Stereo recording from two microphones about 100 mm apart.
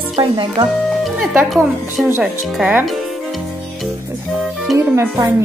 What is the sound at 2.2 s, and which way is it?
Speech, 5° right (ahead or behind).